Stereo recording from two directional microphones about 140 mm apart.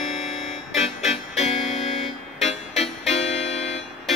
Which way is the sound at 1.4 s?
55° left (ahead or behind).